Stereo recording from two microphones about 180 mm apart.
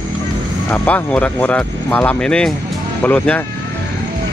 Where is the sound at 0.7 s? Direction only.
10° left (ahead or behind).